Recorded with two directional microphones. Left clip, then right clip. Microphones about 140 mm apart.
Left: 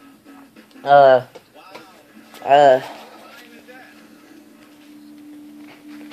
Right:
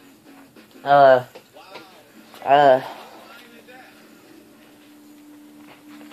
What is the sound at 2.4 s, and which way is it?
Speech, 15° left (ahead or behind).